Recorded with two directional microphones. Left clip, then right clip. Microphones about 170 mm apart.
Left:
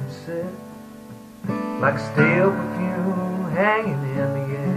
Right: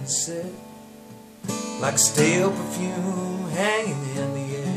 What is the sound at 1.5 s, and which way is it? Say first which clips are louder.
Music: left 5 dB; 30° right (ahead or behind).